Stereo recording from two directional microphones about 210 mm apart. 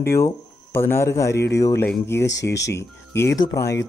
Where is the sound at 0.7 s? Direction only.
10° left (ahead or behind).